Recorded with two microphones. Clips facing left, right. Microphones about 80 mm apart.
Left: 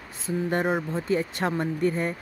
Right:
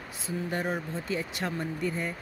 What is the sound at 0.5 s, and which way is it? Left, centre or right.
Speech, left.